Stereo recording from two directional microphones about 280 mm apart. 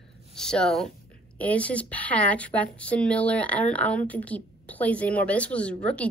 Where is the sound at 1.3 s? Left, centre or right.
Centre.